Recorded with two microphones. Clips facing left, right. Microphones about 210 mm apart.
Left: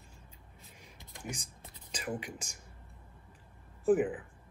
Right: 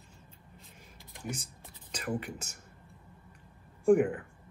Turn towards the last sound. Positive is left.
turn(degrees=5)  # may be behind; listen again after turning